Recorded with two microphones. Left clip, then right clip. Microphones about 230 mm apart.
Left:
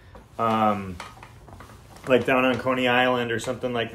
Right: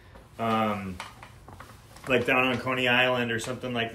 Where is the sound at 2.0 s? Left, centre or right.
Centre.